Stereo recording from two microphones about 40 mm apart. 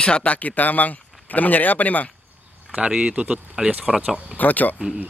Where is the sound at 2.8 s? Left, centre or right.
Right.